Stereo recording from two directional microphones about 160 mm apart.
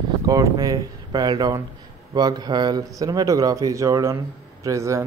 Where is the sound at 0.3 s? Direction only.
20° right (ahead or behind).